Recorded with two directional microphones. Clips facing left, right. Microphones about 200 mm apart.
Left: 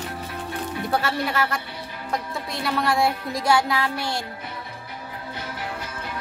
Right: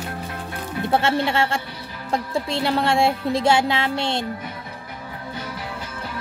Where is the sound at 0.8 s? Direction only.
25° right (ahead or behind).